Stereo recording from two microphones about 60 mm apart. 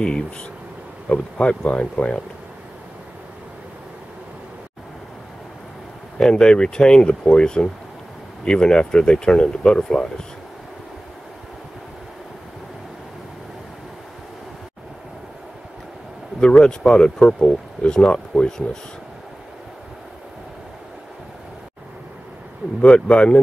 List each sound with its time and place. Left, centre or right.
1.0 s speech: centre
6.1 s speech: centre
16.3 s speech: centre
22.8 s speech: centre